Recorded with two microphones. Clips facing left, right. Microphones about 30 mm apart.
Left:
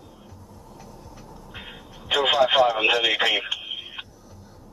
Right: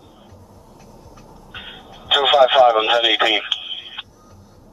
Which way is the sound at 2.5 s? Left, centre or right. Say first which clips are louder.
Right 7 dB; right.